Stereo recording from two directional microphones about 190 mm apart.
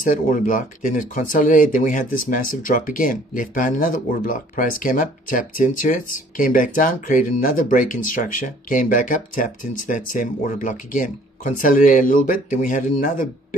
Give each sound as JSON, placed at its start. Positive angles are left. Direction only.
{"t": 0.0, "sound": "speech", "side_deg": 45}